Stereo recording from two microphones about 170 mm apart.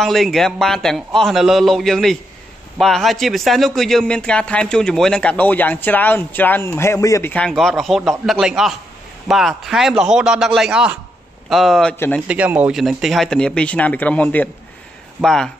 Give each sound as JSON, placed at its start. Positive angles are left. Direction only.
{"t": 0.0, "sound": "speech", "side_deg": 0}